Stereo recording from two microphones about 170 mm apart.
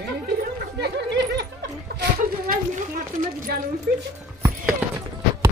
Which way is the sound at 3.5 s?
60° right (ahead or behind).